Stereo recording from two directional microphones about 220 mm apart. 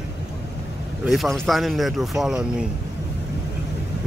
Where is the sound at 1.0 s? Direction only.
Centre (ahead or behind).